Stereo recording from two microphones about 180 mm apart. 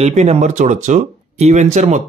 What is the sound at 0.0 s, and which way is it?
Speech, 40° right (ahead or behind).